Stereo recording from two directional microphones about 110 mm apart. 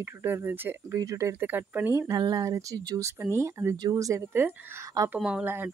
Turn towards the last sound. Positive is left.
turn(degrees=-20)  # may be behind; listen again after turning